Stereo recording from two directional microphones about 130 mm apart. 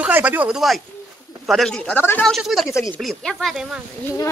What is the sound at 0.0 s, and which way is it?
Speech, 10° right (ahead or behind).